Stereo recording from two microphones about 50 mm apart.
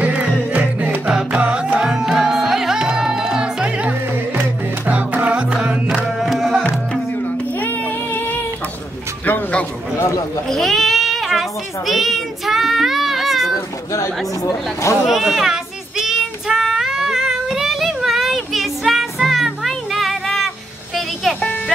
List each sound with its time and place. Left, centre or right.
0.0 s music: right
6.1 s music: centre
7.6 s music: left
9.2 s a sound: left
10.5 s sheep: centre
13.9 s speech: left
15.0 s child singing: centre